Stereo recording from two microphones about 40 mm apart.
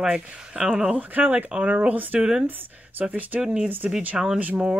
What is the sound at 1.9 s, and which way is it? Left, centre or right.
Speech, right.